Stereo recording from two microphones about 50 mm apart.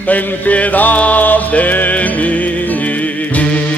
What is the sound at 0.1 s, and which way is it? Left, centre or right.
Music, left.